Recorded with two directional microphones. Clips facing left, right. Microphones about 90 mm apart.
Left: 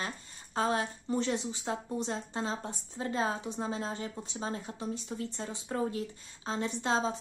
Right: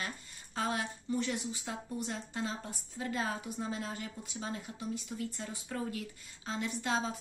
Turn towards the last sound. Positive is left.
turn(degrees=30)  # may be behind; listen again after turning